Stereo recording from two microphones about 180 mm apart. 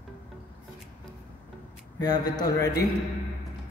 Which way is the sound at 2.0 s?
20° left (ahead or behind).